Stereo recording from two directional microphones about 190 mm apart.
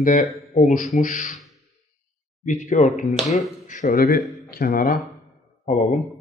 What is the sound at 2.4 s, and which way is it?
Speech, 40° left (ahead or behind).